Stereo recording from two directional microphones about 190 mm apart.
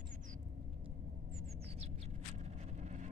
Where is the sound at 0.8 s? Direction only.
35° right (ahead or behind).